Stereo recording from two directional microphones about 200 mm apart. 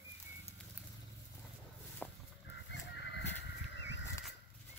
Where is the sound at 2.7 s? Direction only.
60° left (ahead or behind).